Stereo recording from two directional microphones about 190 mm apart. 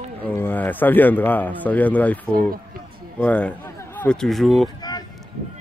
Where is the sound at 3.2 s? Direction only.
5° left (ahead or behind).